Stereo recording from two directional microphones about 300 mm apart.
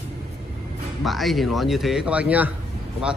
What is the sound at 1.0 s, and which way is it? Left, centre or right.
Speech, centre.